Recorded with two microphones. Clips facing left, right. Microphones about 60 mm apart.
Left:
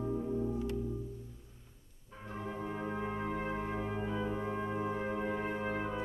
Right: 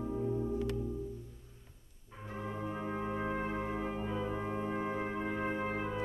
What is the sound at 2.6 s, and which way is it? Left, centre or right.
Music, centre.